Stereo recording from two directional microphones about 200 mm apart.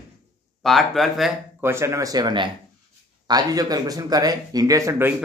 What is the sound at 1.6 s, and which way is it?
Speech, 15° right (ahead or behind).